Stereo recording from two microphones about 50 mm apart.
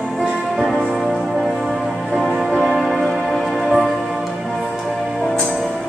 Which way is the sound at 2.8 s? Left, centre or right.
Centre.